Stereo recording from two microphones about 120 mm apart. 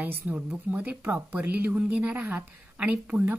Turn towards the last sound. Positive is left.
turn(degrees=-15)  # may be behind; listen again after turning